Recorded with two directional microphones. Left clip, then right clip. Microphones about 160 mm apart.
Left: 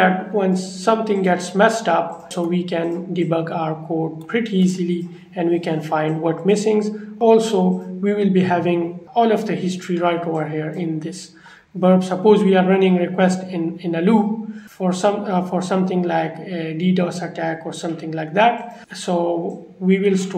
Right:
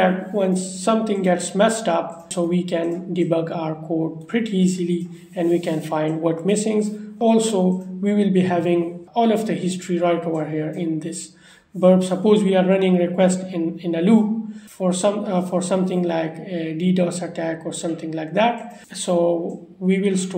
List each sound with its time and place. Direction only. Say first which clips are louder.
0.0 s speech: left 2 dB; 30° right (ahead or behind)